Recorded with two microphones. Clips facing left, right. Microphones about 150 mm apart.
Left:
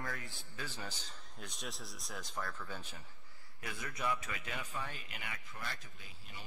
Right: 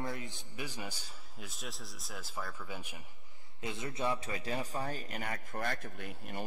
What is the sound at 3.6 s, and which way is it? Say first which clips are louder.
A man's voice: right 4 dB; 25° right (ahead or behind).